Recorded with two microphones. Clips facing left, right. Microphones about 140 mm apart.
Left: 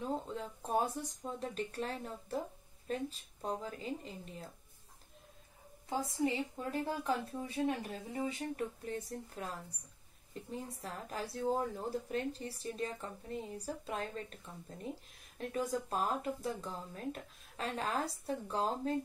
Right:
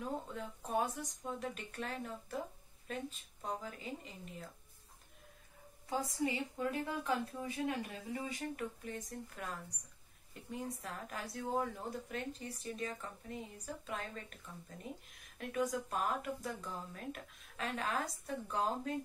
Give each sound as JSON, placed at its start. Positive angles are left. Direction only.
{"t": 0.0, "sound": "a woman's voice", "side_deg": 30}
{"t": 5.9, "sound": "a woman's voice", "side_deg": 25}
{"t": 10.5, "sound": "a woman's voice", "side_deg": 30}